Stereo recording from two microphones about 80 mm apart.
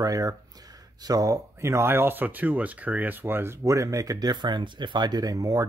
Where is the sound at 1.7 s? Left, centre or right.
Right.